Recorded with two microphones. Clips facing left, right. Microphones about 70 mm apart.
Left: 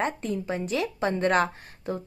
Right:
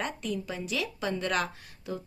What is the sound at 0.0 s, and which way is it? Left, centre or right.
A woman's voice, left.